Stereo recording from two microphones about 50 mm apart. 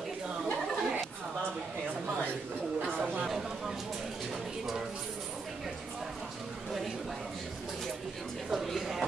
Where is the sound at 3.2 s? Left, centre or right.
Centre.